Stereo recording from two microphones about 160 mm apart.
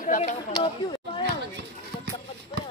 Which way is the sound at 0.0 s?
55° left (ahead or behind).